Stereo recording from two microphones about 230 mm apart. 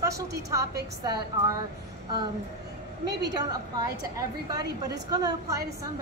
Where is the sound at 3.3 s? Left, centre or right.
Centre.